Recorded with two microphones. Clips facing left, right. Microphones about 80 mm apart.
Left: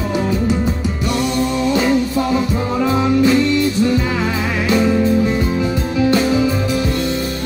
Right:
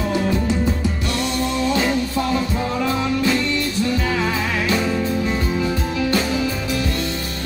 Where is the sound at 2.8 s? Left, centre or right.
Left.